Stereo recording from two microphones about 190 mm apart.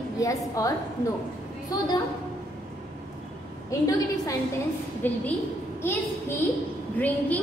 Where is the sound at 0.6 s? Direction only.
20° left (ahead or behind).